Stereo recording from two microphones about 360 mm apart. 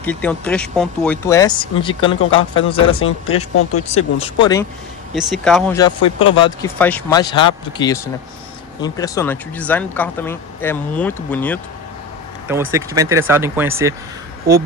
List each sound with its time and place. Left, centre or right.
0.0 s speech: centre
3.0 s speech: left
3.9 s speech: centre
5.1 s speech: centre
12.7 s speech: centre